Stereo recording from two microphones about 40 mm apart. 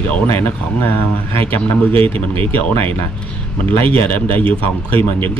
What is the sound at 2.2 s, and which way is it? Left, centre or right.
Speech, left.